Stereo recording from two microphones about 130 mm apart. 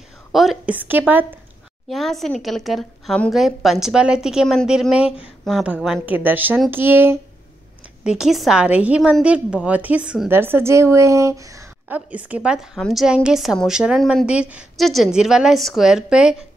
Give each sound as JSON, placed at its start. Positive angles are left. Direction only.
{"t": 0.3, "sound": "a woman's voice", "side_deg": 0}
{"t": 0.7, "sound": "a woman's voice", "side_deg": -15}
{"t": 1.9, "sound": "a woman's voice", "side_deg": 0}
{"t": 8.0, "sound": "a woman's voice", "side_deg": -5}
{"t": 10.3, "sound": "a woman's voice", "side_deg": -15}
{"t": 11.9, "sound": "a woman's voice", "side_deg": -10}